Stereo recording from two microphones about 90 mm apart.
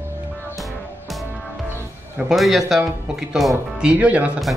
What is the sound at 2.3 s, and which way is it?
Speech, centre (ahead or behind).